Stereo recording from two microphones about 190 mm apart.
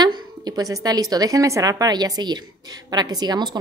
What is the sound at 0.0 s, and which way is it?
A woman's voice, 20° right (ahead or behind).